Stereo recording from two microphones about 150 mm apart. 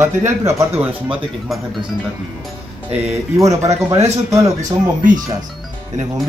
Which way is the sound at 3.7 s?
45° right (ahead or behind).